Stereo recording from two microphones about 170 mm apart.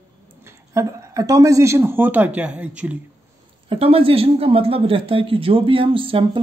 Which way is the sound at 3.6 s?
35° right (ahead or behind).